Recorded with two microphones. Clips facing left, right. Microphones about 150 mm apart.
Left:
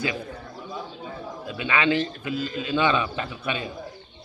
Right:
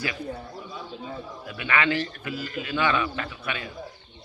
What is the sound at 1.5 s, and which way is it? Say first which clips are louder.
Speech: left 2 dB; 20° left (ahead or behind).